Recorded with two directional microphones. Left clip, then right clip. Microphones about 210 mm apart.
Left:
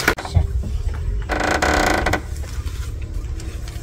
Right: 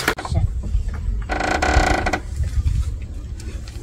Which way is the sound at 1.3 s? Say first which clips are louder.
Left 1 dB; 25° left (ahead or behind).